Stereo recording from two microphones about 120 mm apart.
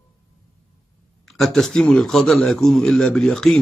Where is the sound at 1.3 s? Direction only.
Centre (ahead or behind).